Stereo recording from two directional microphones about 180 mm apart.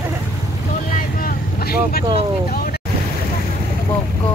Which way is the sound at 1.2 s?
60° left (ahead or behind).